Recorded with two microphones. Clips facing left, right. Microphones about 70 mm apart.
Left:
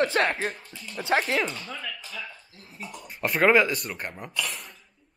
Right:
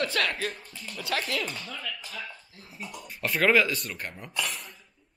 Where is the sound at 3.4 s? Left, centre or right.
Left.